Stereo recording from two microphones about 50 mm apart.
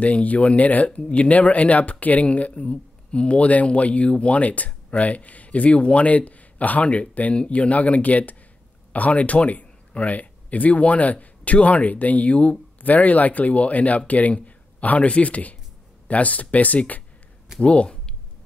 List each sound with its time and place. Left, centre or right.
0.0 s speech: left